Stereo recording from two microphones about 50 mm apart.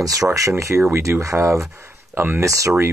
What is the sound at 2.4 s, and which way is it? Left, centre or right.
Speech, right.